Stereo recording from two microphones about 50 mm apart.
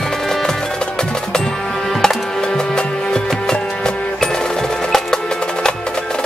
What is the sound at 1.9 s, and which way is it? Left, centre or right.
Music, centre.